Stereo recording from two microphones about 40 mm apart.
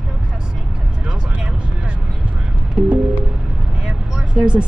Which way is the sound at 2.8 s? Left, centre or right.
Right.